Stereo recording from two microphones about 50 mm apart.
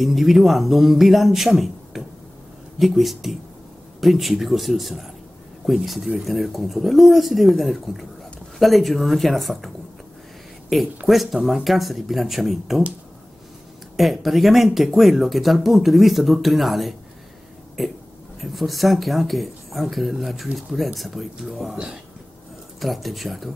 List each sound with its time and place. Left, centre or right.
0.0 s speech: centre
10.7 s speech: centre
13.9 s speech: centre
22.8 s speech: centre